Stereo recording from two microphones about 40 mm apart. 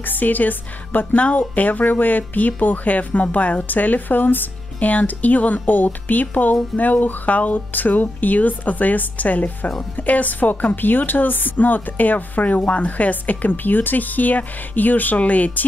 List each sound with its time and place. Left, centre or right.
0.0 s a woman's voice: left
4.7 s a woman's voice: left
15.1 s speech: left